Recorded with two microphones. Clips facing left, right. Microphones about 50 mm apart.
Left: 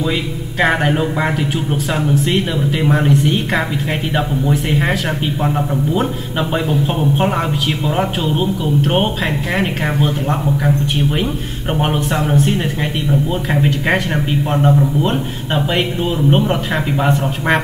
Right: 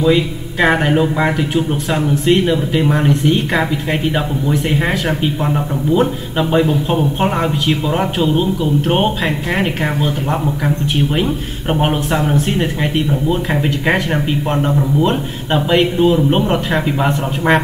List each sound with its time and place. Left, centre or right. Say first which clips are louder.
0.0 s a man's voice: right 6 dB; centre
7.8 s a man's voice: right 2 dB; centre
11.7 s a man's voice: right 2 dB; centre